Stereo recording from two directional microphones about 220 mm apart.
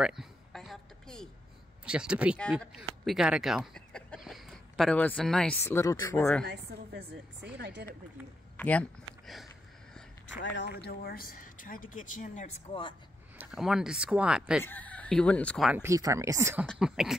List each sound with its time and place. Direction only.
0.0 s a sound: centre (ahead or behind)
1.9 s speech: 5° right (ahead or behind); by 6.4 s 10° left (ahead or behind)
6.4 s a woman's voice: 50° right (ahead or behind)
8.5 s speech: 5° left (ahead or behind)
10.2 s speech: 55° left (ahead or behind); by 12.4 s 35° left (ahead or behind)
13.4 s speech: centre (ahead or behind)
14.6 s speech: 10° left (ahead or behind); by 16.6 s 15° right (ahead or behind)
16.8 s speech: 5° right (ahead or behind)